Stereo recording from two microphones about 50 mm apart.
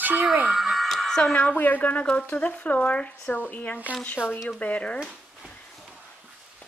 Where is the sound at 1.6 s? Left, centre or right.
Left.